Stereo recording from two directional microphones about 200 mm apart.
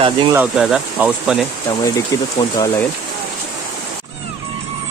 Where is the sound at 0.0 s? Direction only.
25° right (ahead or behind).